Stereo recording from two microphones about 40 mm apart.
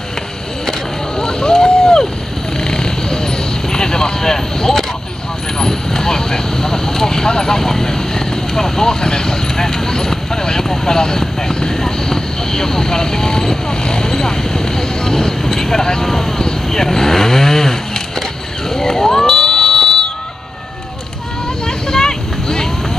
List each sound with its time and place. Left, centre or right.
0.7 s a sound: centre
2.6 s vehicle: centre
18.7 s fire alarm: centre
21.6 s vehicle: centre